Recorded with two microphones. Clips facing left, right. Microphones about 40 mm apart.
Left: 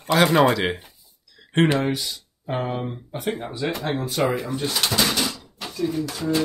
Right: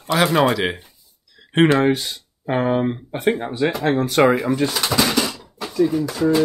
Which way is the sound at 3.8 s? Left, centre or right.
Right.